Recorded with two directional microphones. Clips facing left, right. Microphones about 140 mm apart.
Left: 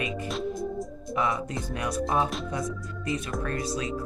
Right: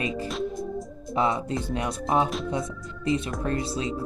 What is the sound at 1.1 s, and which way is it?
Speech, 25° right (ahead or behind).